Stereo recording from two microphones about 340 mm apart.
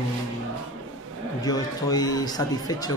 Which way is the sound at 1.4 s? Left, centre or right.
Centre.